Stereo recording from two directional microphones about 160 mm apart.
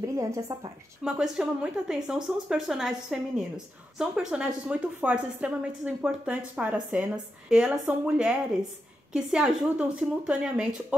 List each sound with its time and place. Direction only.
0.0 s a woman's voice: 20° right (ahead or behind)
1.0 s a woman's voice: 5° right (ahead or behind)